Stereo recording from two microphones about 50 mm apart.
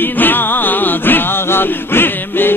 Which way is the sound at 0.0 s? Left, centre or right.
Left.